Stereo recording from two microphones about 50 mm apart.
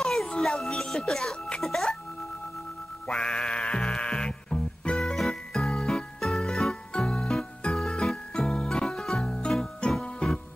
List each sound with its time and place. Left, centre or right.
0.0 s music: centre
3.1 s music: centre
4.9 s music: centre